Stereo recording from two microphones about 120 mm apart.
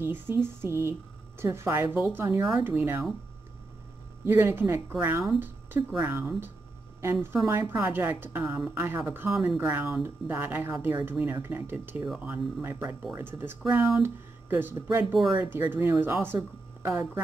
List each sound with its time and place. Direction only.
0.0 s speech: 20° right (ahead or behind)
4.2 s a woman's voice: 20° right (ahead or behind)